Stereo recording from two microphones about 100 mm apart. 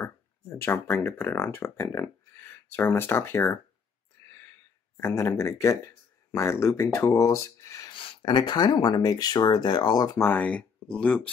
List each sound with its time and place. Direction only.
0.0 s speech: 20° left (ahead or behind)
4.2 s a sound: 30° left (ahead or behind)
4.9 s speech: 25° left (ahead or behind)
7.9 s speech: 60° left (ahead or behind); by 10.1 s 45° left (ahead or behind)
10.1 s speech: 20° left (ahead or behind)